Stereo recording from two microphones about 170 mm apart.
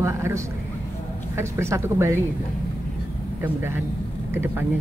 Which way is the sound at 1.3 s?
15° right (ahead or behind).